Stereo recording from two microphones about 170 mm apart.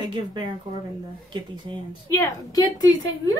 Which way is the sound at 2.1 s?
20° left (ahead or behind).